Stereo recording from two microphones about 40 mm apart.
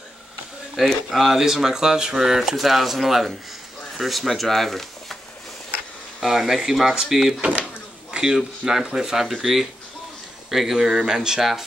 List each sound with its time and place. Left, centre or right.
0.8 s speech: centre
6.2 s speech: centre
8.1 s a sound: centre
8.6 s speech: centre